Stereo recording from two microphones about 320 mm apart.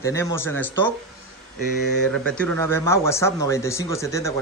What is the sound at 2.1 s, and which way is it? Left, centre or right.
Speech, centre.